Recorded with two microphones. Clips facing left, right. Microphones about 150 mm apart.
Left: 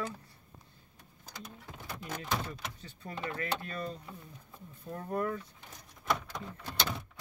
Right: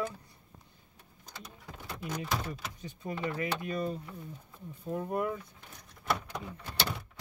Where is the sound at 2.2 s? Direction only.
10° right (ahead or behind).